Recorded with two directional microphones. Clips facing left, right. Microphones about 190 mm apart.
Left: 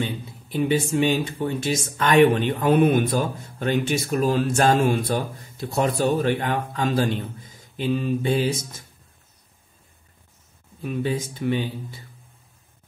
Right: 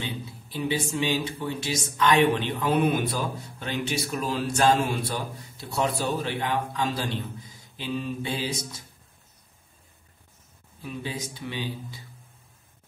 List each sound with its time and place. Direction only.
0.0 s speech: 50° left (ahead or behind)
10.8 s speech: 55° left (ahead or behind)